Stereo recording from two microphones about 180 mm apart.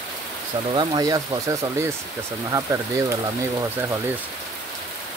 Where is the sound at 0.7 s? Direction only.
20° right (ahead or behind).